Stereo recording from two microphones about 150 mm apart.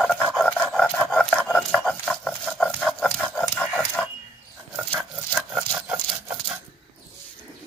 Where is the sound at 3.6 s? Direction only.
10° left (ahead or behind).